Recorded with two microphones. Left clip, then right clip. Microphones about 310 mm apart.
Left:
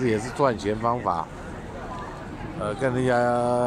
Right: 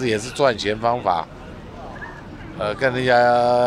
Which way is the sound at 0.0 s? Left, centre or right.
Right.